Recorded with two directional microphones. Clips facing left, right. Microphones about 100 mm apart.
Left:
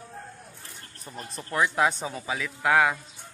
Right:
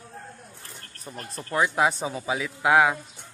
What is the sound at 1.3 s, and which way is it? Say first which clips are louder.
A man's voice: right 1 dB; 10° right (ahead or behind).